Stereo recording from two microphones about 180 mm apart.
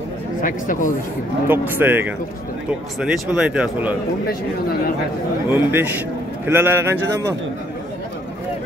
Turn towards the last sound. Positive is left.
turn(degrees=-15)  # may be behind; listen again after turning